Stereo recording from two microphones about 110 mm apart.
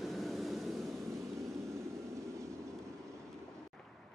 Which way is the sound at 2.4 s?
25° right (ahead or behind).